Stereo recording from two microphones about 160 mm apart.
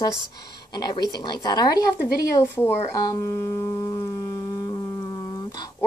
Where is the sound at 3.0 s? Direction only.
20° left (ahead or behind).